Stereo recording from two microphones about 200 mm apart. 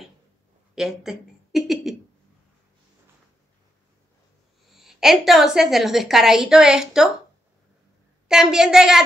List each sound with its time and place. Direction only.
0.7 s speech: 5° right (ahead or behind)
4.6 s a woman's voice: centre (ahead or behind)
8.3 s a woman's voice: 5° right (ahead or behind)